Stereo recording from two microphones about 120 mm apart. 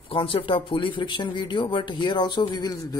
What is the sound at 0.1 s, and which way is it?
Speech, 45° left (ahead or behind).